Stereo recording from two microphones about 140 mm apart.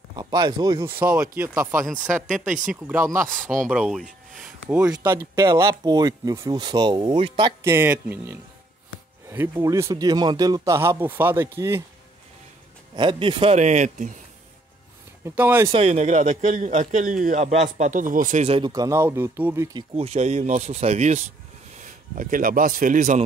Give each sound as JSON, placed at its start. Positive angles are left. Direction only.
{"t": 0.1, "sound": "speech", "side_deg": -30}
{"t": 0.8, "sound": "speech", "side_deg": -10}
{"t": 2.2, "sound": "speech", "side_deg": -5}
{"t": 2.9, "sound": "speech", "side_deg": -20}
{"t": 3.6, "sound": "speech", "side_deg": -5}
{"t": 5.0, "sound": "speech", "side_deg": -20}
{"t": 7.6, "sound": "speech", "side_deg": -15}
{"t": 12.9, "sound": "speech", "side_deg": -35}
{"t": 13.6, "sound": "a man's voice", "side_deg": -55}
{"t": 15.2, "sound": "speech", "side_deg": -15}
{"t": 15.7, "sound": "a man's voice", "side_deg": -50}
{"t": 18.7, "sound": "speech", "side_deg": -25}
{"t": 20.0, "sound": "speech", "side_deg": -50}
{"t": 21.7, "sound": "speech", "side_deg": -65}